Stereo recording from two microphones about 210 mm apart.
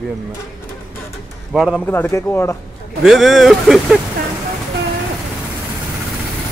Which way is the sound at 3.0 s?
Centre (ahead or behind).